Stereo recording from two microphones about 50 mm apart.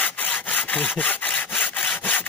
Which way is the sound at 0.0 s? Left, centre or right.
Left.